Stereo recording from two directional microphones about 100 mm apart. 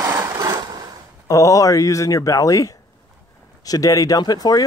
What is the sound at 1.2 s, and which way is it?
Speech, 35° left (ahead or behind).